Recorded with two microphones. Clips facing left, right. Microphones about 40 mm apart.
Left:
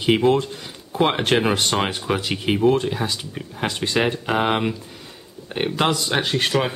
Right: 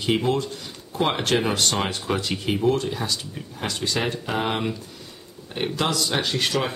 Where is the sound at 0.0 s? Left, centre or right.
Left.